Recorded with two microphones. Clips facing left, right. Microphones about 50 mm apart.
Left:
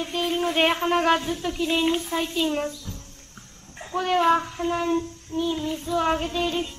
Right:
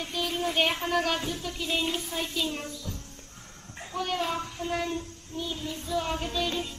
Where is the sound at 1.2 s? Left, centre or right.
Left.